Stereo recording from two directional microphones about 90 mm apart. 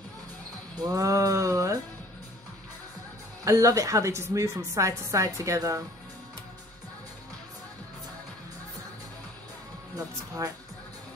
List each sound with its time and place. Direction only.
0.7 s a woman's voice: 40° right (ahead or behind)
3.4 s a woman's voice: 40° right (ahead or behind)
9.9 s a woman's voice: 40° right (ahead or behind)